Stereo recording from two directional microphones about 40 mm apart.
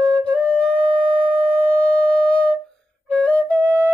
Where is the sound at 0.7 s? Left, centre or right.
Right.